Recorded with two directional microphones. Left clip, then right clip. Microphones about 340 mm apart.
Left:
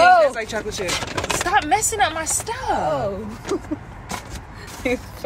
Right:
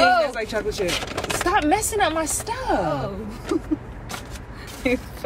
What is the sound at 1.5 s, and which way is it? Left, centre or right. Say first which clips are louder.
Speech: left 1 dB; centre.